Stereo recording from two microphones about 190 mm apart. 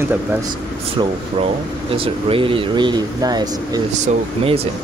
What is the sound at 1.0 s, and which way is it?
Speech, 25° right (ahead or behind).